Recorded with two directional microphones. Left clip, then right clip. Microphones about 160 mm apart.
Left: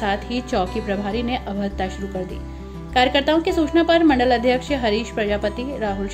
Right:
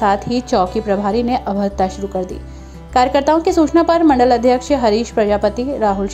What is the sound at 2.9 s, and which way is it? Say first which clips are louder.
A woman's voice: right 4 dB; 35° right (ahead or behind).